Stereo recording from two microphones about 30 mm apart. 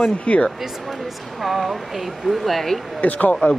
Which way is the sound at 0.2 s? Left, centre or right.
Left.